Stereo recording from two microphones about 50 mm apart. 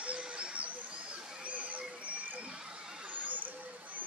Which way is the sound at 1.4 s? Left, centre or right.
Right.